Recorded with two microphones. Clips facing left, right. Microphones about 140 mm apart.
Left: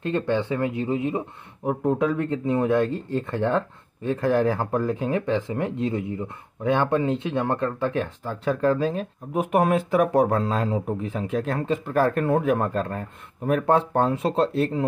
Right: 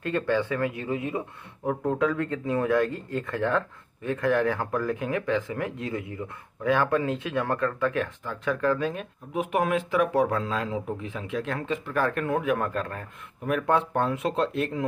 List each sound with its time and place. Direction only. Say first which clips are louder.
0.0 s speech: left 2 dB; 25° left (ahead or behind)
9.3 s speech: left 4 dB; 45° left (ahead or behind)